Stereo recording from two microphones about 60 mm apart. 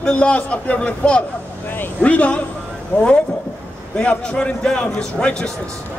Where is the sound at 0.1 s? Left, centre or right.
Left.